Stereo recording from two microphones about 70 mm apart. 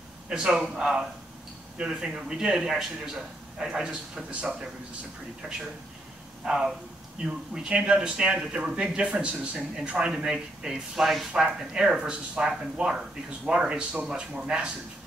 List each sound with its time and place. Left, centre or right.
0.3 s a man's voice: centre